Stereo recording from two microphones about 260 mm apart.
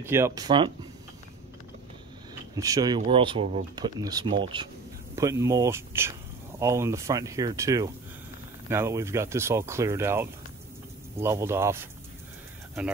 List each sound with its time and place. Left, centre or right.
0.0 s speech: centre
2.5 s speech: centre